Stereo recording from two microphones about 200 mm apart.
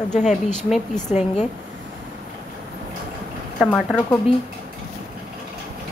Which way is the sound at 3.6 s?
Centre (ahead or behind).